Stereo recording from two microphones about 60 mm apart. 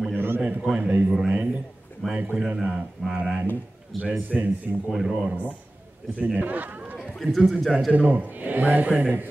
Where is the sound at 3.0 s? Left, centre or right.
Centre.